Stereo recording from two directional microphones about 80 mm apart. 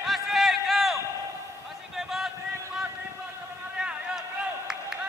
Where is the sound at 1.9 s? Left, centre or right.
Centre.